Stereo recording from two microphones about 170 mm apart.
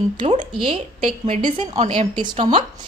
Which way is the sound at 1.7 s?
40° right (ahead or behind).